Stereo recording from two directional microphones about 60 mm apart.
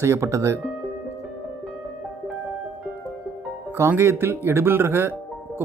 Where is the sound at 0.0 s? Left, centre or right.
Right.